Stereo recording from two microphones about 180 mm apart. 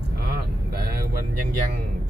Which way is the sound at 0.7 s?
55° right (ahead or behind).